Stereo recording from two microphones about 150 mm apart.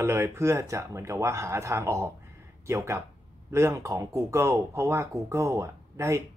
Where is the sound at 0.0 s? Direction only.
15° right (ahead or behind).